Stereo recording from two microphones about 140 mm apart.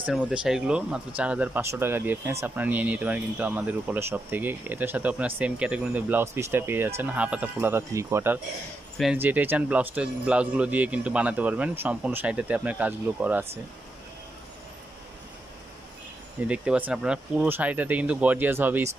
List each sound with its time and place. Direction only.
0.0 s speech: 5° right (ahead or behind)
16.4 s speech: 10° right (ahead or behind)